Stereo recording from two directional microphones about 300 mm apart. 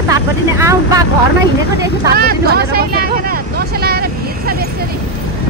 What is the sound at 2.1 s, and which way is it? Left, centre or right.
Speech, right.